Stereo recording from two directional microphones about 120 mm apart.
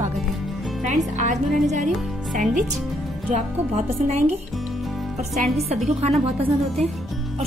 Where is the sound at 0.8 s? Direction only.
90° right.